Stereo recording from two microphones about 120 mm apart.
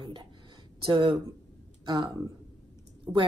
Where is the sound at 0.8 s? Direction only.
45° right (ahead or behind).